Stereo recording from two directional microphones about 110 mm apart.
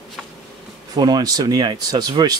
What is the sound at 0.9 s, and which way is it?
Speech, 40° right (ahead or behind).